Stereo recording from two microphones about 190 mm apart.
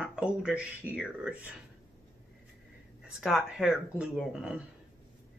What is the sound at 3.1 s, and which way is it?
Speech, 5° right (ahead or behind).